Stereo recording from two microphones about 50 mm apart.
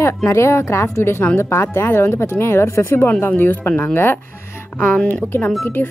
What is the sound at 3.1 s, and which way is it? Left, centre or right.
Speech, left.